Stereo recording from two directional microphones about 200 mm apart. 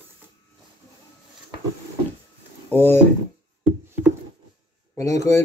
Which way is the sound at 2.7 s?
10° left (ahead or behind).